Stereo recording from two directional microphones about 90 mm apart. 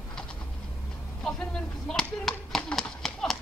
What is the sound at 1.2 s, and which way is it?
Clapping, 5° left (ahead or behind).